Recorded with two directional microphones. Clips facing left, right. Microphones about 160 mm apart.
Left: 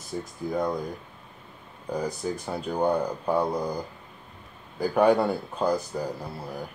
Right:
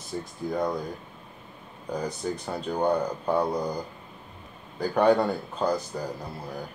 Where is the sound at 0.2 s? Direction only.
Centre (ahead or behind).